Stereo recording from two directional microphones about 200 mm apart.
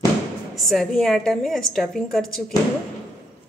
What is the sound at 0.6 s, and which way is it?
A woman's voice, centre (ahead or behind).